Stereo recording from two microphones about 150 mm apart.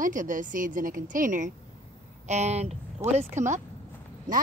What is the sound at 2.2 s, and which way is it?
Speech, 50° right (ahead or behind).